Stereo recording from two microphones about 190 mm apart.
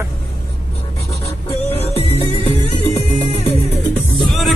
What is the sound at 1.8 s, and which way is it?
Music, 35° left (ahead or behind).